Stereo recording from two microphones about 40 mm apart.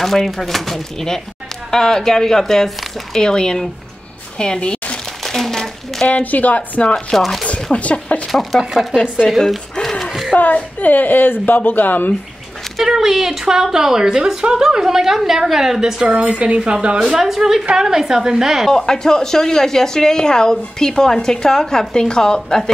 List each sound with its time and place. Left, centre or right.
0.0 s a woman's voice: centre; by 4.9 s left
5.2 s a sound: centre
6.0 s speech: left
7.1 s speech: centre
7.7 s speech: left
8.3 s speech: centre
9.2 s a woman's voice: centre
9.8 s a sound: centre
10.3 s a woman's voice: left
12.8 s a woman's voice: centre
16.2 s a woman's voice: right
17.0 s a woman's voice: centre
18.7 s a woman's voice: centre